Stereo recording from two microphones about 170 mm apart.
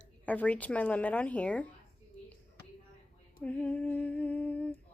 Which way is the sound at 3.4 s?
10° left (ahead or behind).